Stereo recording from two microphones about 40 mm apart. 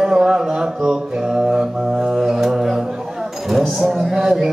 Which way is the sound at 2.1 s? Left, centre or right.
Centre.